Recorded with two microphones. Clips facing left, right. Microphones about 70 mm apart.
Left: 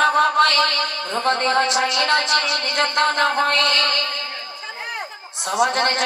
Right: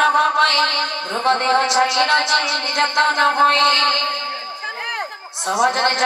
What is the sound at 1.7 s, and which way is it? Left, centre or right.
Music, right.